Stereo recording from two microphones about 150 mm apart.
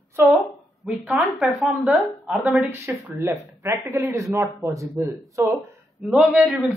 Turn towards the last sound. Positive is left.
turn(degrees=0)  # may be behind; listen again after turning